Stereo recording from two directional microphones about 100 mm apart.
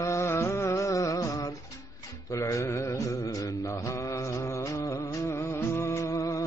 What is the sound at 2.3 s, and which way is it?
Mantra, 30° left (ahead or behind).